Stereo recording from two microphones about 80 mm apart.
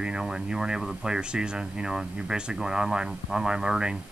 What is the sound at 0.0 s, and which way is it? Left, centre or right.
Speech, centre.